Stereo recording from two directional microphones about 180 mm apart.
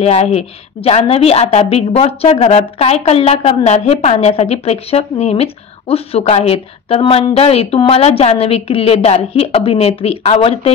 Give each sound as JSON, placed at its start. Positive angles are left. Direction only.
{"t": 0.0, "sound": "a woman's voice", "side_deg": 35}